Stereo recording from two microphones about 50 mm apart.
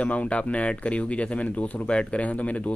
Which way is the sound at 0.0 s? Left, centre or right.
Left.